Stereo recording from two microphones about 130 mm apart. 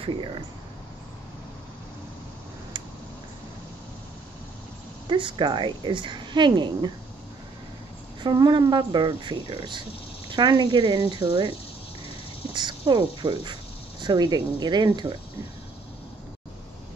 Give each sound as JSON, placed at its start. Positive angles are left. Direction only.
{"t": 0.0, "sound": "a woman's voice", "side_deg": -40}
{"t": 5.0, "sound": "a woman's voice", "side_deg": -40}
{"t": 8.2, "sound": "a woman's voice", "side_deg": -35}
{"t": 12.5, "sound": "a woman's voice", "side_deg": -35}